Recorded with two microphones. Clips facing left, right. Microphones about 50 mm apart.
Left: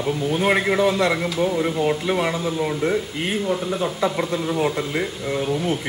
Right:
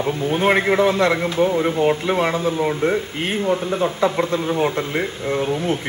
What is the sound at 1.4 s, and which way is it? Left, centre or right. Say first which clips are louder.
Speech: right 4 dB; centre.